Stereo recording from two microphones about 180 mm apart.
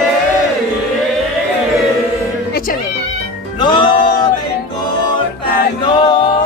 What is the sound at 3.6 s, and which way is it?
Music, 25° left (ahead or behind).